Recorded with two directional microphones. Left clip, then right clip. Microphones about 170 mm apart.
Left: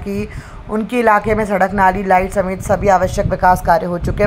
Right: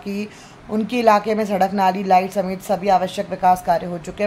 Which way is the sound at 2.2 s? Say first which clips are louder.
Left 3 dB; centre (ahead or behind).